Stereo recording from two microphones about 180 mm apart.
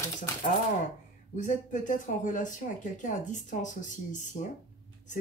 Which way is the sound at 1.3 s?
45° left (ahead or behind).